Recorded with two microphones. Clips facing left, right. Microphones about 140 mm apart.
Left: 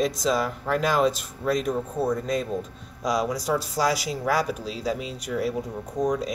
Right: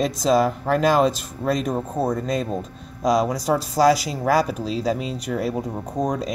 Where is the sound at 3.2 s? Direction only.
35° right (ahead or behind).